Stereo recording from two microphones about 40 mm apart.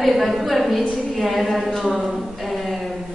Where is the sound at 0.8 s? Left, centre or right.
Right.